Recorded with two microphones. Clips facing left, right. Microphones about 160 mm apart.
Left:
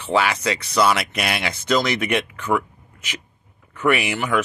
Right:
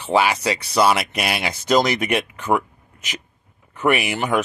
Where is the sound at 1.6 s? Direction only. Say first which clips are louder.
Right 3 dB; 40° right (ahead or behind).